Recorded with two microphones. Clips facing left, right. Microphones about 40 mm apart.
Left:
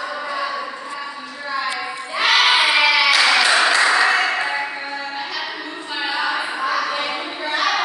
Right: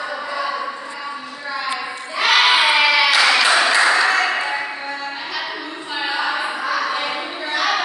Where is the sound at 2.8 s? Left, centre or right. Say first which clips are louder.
Even; centre.